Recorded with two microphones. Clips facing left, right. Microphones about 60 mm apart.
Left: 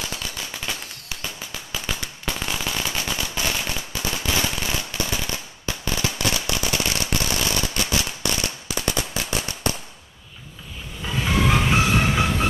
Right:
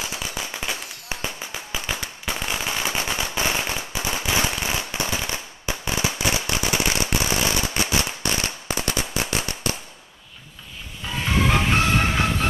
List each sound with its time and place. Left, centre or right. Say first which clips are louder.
0.0 s firecracker: right 1 dB; centre
7.2 s a sound: right 1 dB; right
8.0 s firecracker: right 1 dB; right
11.2 s music: even; centre